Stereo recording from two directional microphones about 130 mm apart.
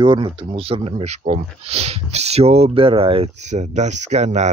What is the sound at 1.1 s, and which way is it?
Speech, 55° right (ahead or behind).